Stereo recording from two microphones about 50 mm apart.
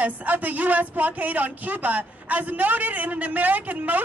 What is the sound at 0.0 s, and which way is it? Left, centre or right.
Speech, right.